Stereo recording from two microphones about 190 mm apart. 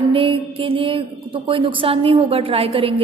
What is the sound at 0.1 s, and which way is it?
A woman's voice, 30° right (ahead or behind).